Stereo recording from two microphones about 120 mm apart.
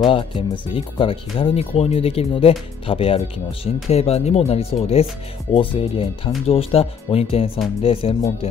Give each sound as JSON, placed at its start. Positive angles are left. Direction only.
{"t": 0.0, "sound": "speech", "side_deg": 45}